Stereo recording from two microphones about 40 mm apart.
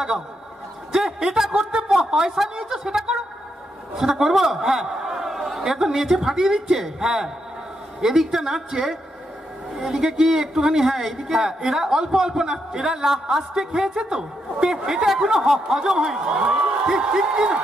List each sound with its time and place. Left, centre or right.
0.9 s a man's voice: centre